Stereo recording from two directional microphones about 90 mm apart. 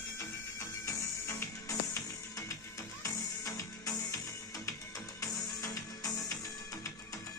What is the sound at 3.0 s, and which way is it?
Music, 40° left (ahead or behind).